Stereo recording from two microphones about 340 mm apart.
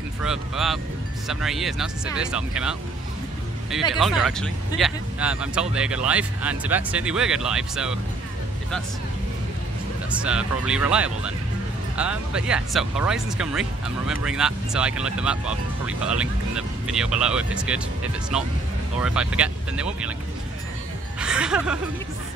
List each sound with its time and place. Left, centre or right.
0.2 s speech: centre
3.9 s speech: centre
10.1 s speech: centre
21.2 s speech: centre